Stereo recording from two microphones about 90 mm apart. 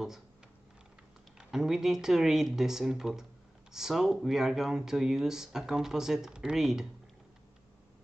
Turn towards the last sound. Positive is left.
turn(degrees=-5)  # may be behind; listen again after turning